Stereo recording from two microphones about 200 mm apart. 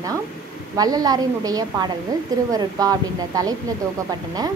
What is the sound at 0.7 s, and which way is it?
A woman's voice, 20° right (ahead or behind).